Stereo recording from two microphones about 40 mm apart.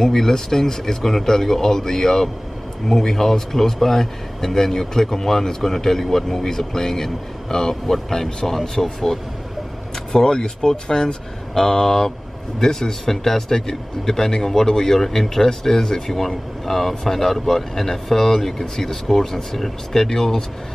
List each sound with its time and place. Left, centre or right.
0.0 s a man's voice: centre